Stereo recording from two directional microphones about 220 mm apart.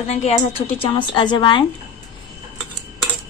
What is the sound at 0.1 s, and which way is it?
A woman's voice, 30° left (ahead or behind).